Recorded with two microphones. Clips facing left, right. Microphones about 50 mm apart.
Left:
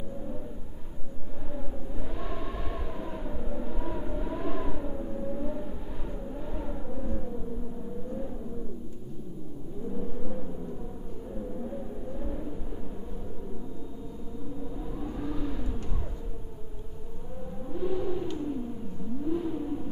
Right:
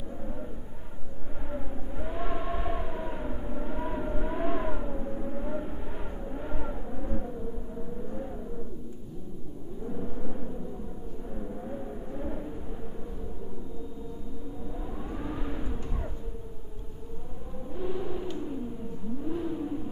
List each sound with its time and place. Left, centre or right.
1.5 s a sound: right
6.4 s vehicle: right
11.6 s vehicle: centre
15.0 s vehicle: right
17.7 s a sound: centre
19.2 s vehicle: centre